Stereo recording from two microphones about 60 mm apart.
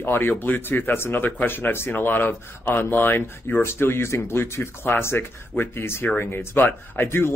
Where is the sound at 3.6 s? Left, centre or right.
Left.